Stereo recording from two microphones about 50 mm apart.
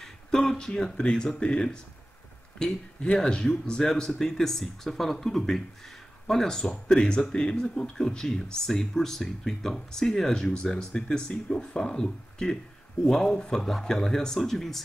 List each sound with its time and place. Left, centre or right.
0.5 s speech: centre
4.2 s speech: centre